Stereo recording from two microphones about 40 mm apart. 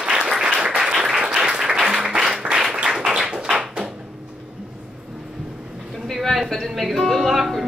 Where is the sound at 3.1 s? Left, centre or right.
Centre.